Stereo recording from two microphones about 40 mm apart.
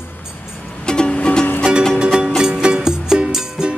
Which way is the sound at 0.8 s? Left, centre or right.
Left.